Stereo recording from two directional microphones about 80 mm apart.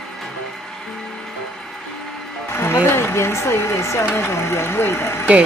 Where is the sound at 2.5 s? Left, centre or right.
Left.